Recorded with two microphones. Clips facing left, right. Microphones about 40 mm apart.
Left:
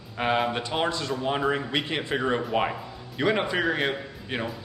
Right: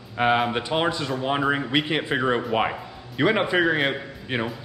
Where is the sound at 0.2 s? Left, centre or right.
Centre.